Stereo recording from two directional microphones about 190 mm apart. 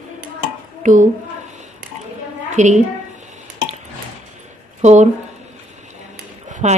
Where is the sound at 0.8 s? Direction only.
40° right (ahead or behind).